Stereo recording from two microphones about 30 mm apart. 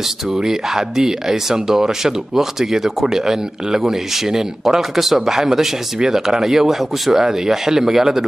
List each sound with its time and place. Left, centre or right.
0.3 s speech: centre
6.7 s speech: centre
7.2 s speech: centre